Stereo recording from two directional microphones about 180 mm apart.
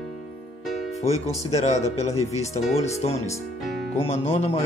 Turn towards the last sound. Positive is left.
turn(degrees=35)  # may be behind; listen again after turning